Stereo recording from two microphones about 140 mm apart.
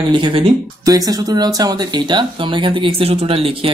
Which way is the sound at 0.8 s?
25° right (ahead or behind).